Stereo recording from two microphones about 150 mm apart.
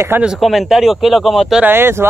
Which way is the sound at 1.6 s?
15° right (ahead or behind).